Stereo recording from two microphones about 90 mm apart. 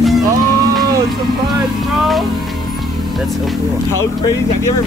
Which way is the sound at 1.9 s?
Centre (ahead or behind).